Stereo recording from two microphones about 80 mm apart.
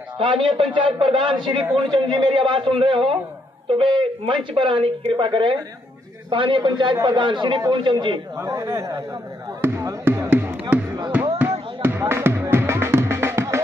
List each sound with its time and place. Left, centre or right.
0.2 s a man's voice: right
7.1 s speech: right
8.5 s speech: right
9.6 s music: right
10.0 s a sound: right
12.0 s music: right